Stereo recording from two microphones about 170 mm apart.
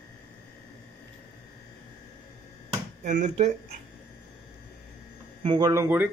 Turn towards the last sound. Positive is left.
turn(degrees=-15)  # may be behind; listen again after turning